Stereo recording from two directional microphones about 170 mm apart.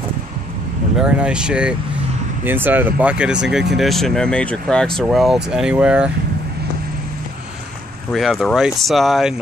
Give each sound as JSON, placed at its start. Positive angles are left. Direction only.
{"t": 1.0, "sound": "speech", "side_deg": -5}
{"t": 8.1, "sound": "speech", "side_deg": 0}